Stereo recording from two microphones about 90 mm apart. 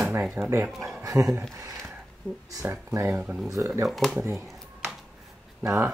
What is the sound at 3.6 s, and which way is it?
Speech, 35° right (ahead or behind).